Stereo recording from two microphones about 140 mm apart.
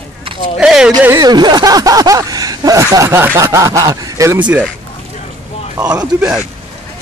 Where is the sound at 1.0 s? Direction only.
25° right (ahead or behind).